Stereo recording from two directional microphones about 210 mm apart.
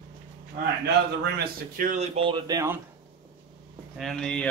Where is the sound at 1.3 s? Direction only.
40° right (ahead or behind); by 2.7 s 15° right (ahead or behind).